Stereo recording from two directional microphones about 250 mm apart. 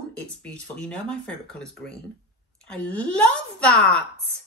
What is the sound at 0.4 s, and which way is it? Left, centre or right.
A woman's voice, centre.